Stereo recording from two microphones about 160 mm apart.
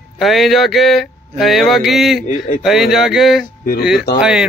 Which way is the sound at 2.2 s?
50° left (ahead or behind).